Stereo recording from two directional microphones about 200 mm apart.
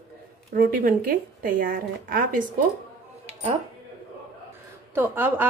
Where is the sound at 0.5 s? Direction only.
45° right (ahead or behind).